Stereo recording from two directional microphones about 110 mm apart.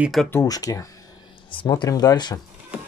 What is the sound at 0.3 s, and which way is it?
Speech, 30° left (ahead or behind).